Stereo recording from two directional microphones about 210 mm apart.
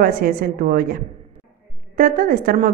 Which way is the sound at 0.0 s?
45° right (ahead or behind).